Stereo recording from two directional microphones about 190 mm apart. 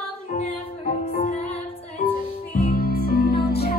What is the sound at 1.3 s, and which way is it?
Music, 35° left (ahead or behind).